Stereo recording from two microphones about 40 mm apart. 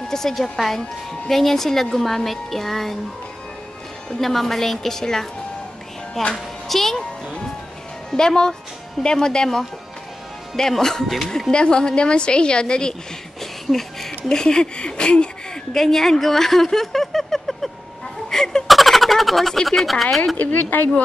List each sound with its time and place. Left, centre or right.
0.1 s speech: centre
4.1 s speech: centre
6.3 s a child's voice: centre
8.1 s a woman's voice: centre
11.5 s a woman's voice: left
13.4 s a sound: centre
14.3 s a woman's voice: centre
15.7 s speech: centre
18.3 s a sound: centre
18.7 s a sound: centre
19.5 s speech: centre
20.3 s speech: left